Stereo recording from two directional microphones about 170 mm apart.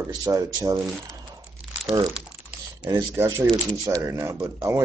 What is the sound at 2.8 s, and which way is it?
Speech, 20° right (ahead or behind).